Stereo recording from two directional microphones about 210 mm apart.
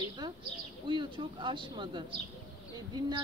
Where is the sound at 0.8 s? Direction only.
25° right (ahead or behind).